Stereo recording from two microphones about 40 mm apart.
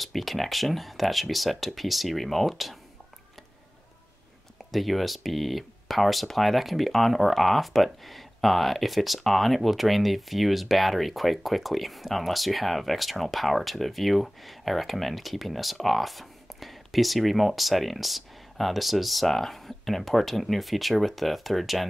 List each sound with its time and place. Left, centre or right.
0.0 s speech: centre
4.6 s speech: centre